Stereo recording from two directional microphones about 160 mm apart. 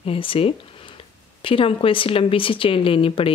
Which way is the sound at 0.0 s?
35° left (ahead or behind).